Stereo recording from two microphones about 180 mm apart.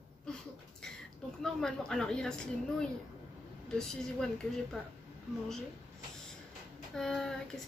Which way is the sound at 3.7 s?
5° left (ahead or behind).